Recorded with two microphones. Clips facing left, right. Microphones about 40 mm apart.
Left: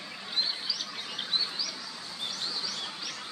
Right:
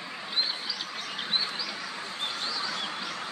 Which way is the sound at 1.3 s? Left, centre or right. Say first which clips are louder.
Right 2 dB; right.